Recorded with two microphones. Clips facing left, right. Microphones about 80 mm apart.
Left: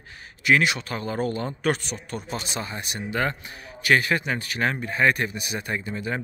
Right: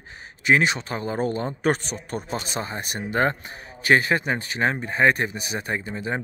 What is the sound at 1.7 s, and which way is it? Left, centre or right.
Speech, right.